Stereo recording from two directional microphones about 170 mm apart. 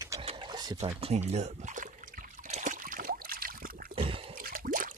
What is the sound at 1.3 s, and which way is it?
Trickle, 40° right (ahead or behind).